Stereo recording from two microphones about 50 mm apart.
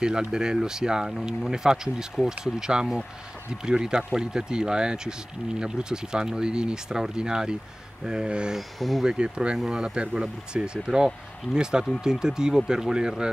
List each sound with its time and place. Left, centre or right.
0.0 s speech: centre
8.5 s speech: centre
9.0 s speech: centre